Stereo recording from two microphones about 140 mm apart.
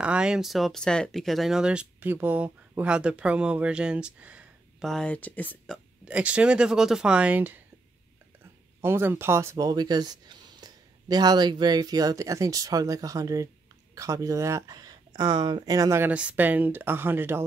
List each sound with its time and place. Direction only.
0.0 s speech: 5° right (ahead or behind)
4.8 s speech: 5° left (ahead or behind)
6.0 s speech: 10° right (ahead or behind)
8.8 s speech: 15° right (ahead or behind)